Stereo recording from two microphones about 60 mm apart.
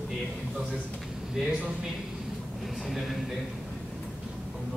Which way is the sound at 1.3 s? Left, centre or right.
Centre.